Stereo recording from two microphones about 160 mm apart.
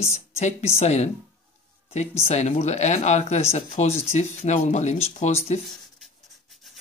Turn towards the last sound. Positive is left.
turn(degrees=0)  # may be behind; listen again after turning